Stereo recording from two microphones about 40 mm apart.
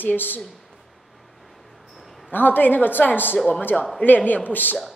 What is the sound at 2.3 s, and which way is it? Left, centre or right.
Speech, left.